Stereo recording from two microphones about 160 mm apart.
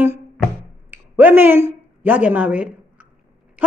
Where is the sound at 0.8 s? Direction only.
10° right (ahead or behind).